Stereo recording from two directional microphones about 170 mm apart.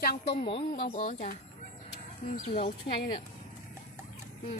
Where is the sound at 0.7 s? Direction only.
55° left (ahead or behind).